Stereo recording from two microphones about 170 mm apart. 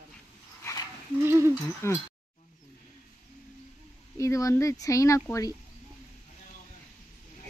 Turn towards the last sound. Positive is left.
turn(degrees=20)  # may be behind; listen again after turning